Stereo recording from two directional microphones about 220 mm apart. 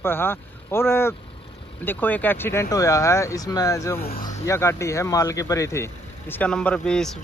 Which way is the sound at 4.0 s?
45° left (ahead or behind).